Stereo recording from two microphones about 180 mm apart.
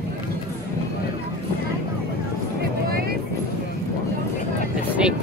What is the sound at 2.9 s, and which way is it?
Vehicle, 55° right (ahead or behind).